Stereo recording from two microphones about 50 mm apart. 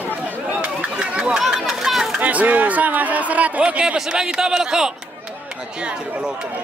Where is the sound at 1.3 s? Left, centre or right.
Centre.